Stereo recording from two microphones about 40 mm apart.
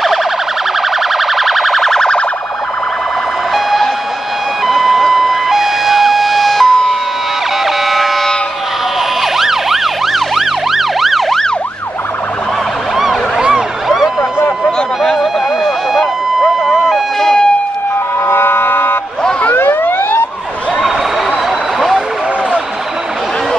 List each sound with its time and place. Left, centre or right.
1.1 s siren: centre
3.5 s emergency vehicle: centre
4.6 s vehicle: centre
9.2 s emergency vehicle: centre
13.8 s emergency vehicle: centre
15.1 s a sound: centre
16.6 s emergency vehicle: centre
17.2 s a sound: centre
18.3 s a sound: left
19.5 s emergency vehicle: left